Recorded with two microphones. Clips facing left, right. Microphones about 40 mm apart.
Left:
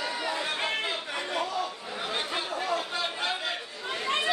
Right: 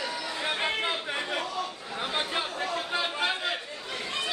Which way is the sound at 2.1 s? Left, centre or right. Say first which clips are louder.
Right 1 dB; centre.